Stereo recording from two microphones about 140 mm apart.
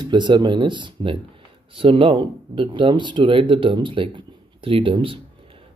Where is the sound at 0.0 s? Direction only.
35° right (ahead or behind).